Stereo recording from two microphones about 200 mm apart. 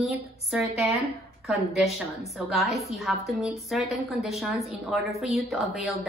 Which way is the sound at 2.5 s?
Centre (ahead or behind).